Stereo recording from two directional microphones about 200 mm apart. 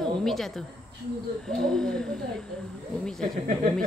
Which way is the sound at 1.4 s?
5° left (ahead or behind).